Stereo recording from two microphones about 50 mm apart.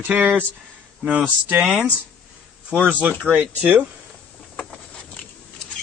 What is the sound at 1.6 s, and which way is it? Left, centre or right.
Speech, centre.